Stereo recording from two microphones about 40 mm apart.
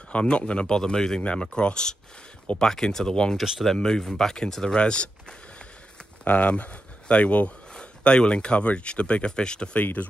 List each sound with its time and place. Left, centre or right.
0.1 s speech: left
0.7 s speech: centre
4.7 s speech: left
6.2 s speech: left